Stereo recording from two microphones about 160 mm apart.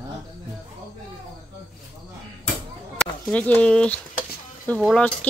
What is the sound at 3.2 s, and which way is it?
Speech, 10° left (ahead or behind).